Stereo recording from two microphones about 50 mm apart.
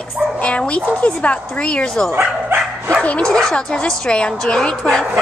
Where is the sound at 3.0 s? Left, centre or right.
Left.